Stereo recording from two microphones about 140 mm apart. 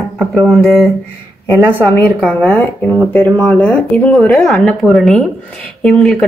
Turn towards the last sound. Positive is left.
turn(degrees=5)  # may be behind; listen again after turning